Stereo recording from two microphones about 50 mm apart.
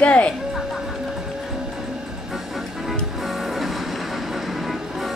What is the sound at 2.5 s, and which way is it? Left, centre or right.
Music, centre.